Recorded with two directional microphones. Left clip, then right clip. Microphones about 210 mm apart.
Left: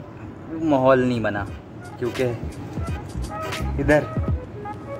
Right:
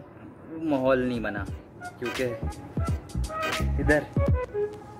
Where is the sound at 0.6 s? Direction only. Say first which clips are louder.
Left 7 dB; 10° right (ahead or behind).